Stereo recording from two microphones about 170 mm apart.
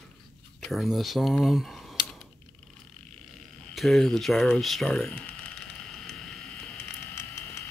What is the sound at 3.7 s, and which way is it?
Speech, centre (ahead or behind).